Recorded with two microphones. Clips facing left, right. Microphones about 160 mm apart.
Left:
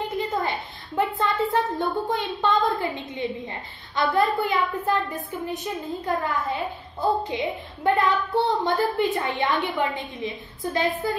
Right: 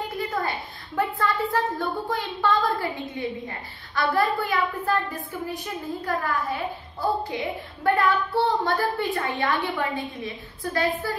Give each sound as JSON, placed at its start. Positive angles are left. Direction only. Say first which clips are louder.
{"t": 0.9, "sound": "speech", "louder": "left 1 dB", "side_deg": 20}